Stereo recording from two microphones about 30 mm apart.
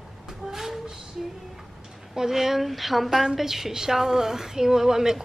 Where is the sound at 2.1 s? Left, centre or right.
Centre.